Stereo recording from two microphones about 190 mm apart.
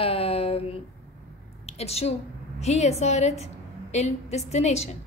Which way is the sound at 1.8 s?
35° left (ahead or behind).